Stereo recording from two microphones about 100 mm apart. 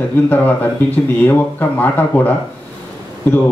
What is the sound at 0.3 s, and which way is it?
Speech, 20° left (ahead or behind).